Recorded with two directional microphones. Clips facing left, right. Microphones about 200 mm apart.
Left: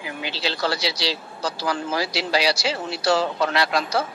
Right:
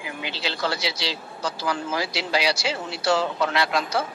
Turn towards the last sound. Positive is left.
turn(degrees=35)  # may be behind; listen again after turning